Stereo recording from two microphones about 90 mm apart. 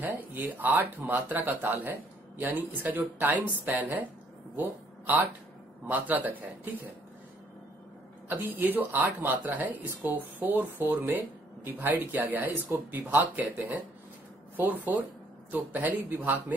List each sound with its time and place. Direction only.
0.1 s speech: 20° right (ahead or behind)
8.3 s speech: 20° right (ahead or behind)